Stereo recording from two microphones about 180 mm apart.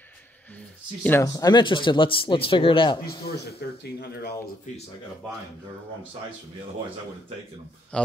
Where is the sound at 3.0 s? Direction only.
60° left (ahead or behind).